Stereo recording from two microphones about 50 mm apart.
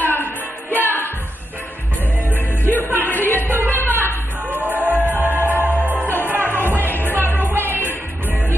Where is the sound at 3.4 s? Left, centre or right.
Right.